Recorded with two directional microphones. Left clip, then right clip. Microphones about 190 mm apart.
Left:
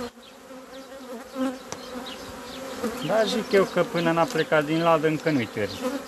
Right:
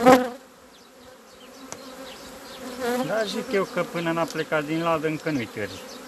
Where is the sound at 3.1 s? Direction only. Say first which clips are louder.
Left 4 dB; centre (ahead or behind).